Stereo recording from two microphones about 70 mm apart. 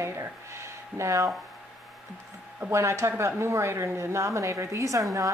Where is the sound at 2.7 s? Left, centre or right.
Right.